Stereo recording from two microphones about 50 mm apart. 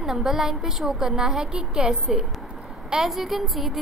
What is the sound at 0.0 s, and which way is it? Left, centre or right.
A woman's voice, centre.